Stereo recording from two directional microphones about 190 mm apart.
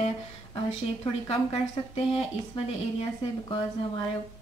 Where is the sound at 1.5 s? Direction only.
30° left (ahead or behind).